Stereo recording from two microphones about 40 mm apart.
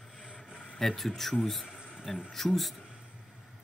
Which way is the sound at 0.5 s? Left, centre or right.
Left.